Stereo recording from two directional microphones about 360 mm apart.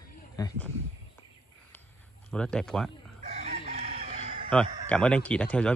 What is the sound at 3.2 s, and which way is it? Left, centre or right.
Chicken, centre.